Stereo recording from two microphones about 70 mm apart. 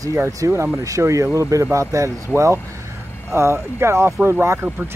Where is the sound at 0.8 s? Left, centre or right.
Right.